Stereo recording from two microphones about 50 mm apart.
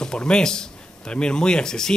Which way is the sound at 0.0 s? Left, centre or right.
Centre.